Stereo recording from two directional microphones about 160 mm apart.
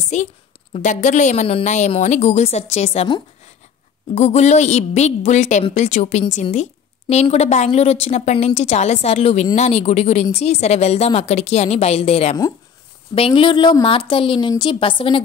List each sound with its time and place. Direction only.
0.1 s a woman's voice: 50° left (ahead or behind); by 15.2 s 35° left (ahead or behind)